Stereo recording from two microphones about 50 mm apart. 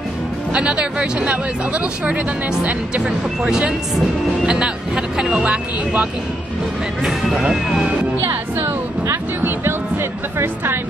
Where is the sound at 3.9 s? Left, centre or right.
Centre.